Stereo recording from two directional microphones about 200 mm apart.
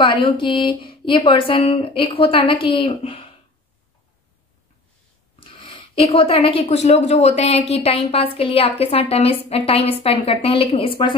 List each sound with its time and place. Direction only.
0.0 s speech: 25° left (ahead or behind)
5.4 s speech: 25° left (ahead or behind)